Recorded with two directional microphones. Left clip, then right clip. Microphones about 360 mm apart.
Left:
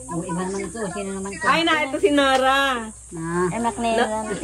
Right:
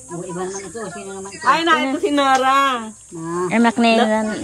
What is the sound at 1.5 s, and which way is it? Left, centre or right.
A woman's voice, centre.